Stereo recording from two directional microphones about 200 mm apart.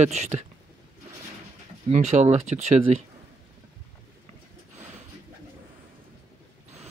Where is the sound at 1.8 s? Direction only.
35° right (ahead or behind).